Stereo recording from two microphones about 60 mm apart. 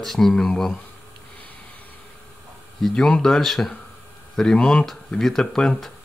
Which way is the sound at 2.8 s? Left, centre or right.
Centre.